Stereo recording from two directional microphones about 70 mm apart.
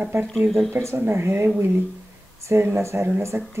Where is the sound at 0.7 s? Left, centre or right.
Right.